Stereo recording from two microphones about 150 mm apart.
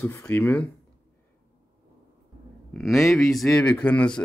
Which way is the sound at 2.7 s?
Centre (ahead or behind).